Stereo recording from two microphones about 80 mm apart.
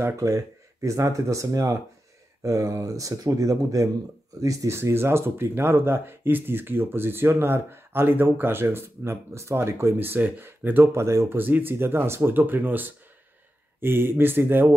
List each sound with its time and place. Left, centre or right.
0.0 s speech: right
11.3 s speech: right